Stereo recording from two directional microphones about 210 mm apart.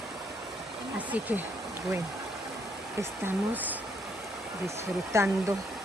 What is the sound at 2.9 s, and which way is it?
Speech, 10° right (ahead or behind).